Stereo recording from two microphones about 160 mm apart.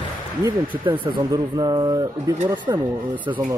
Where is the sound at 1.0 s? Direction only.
30° right (ahead or behind).